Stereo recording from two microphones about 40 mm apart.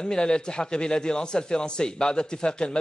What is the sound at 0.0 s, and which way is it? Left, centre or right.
A man's voice, left.